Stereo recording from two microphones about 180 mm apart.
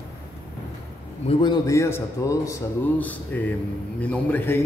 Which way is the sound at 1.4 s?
20° left (ahead or behind).